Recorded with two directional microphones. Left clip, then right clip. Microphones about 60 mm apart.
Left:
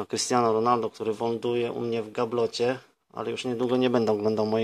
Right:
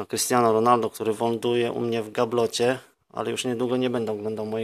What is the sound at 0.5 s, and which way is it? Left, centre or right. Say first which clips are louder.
Speech: right 4 dB; centre.